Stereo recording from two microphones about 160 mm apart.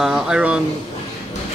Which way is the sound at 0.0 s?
5° right (ahead or behind).